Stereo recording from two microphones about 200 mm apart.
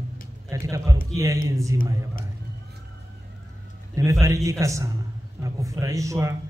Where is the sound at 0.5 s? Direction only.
15° right (ahead or behind).